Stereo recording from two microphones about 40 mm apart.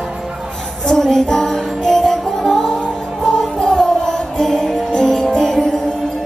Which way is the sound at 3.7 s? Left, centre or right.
Centre.